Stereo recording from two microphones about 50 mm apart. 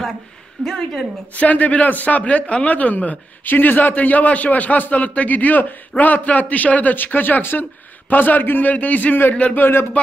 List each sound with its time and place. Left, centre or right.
0.7 s a woman's voice: centre
1.3 s a man's voice: left
9.3 s speech: left
9.6 s speech: left